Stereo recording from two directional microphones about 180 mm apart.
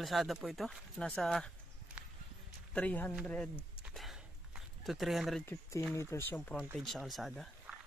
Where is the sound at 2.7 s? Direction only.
10° left (ahead or behind).